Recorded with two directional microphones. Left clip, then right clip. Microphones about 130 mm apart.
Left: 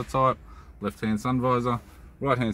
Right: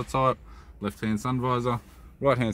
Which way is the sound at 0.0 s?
50° right (ahead or behind).